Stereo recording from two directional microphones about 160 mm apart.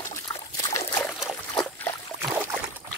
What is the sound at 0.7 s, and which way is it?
Trickle, 15° left (ahead or behind).